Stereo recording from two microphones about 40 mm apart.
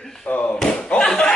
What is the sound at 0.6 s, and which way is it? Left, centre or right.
Slam, centre.